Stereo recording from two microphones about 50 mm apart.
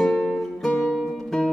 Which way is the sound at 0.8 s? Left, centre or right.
Centre.